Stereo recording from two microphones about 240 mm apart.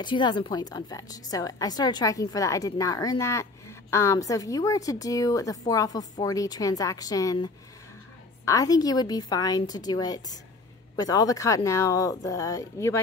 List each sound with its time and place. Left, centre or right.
0.0 s a woman's voice: centre